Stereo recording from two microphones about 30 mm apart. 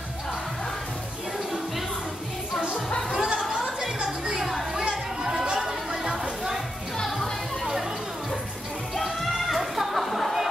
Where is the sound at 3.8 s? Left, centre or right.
Centre.